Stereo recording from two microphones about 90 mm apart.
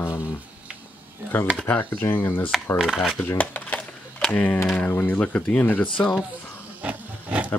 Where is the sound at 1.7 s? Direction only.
20° left (ahead or behind).